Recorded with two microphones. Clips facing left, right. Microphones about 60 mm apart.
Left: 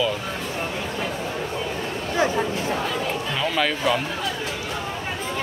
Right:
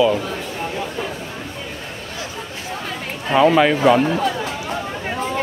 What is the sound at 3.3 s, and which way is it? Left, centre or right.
Speech, right.